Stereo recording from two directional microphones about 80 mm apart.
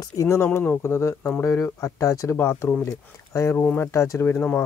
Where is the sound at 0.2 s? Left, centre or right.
Left.